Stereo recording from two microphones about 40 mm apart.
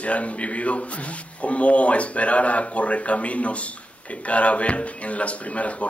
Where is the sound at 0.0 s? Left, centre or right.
Left.